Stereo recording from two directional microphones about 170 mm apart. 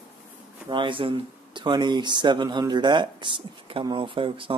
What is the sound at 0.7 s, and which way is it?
Speech, 30° right (ahead or behind).